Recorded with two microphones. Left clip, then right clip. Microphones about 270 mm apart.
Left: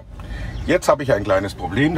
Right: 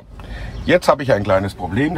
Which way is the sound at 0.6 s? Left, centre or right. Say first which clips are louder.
Right 2 dB; right.